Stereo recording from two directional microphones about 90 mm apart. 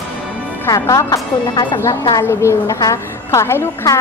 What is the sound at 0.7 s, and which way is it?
A woman's voice, 40° left (ahead or behind).